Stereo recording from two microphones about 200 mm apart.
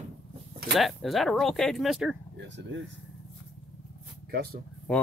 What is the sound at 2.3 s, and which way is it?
Speech, 65° right (ahead or behind).